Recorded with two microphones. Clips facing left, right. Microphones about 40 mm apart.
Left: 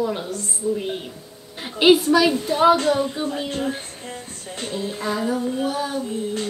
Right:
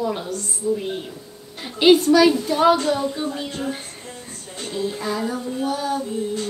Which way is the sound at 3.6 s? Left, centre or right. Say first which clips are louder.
Left 2 dB; centre.